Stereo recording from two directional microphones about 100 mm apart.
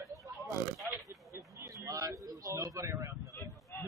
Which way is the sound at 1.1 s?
30° right (ahead or behind).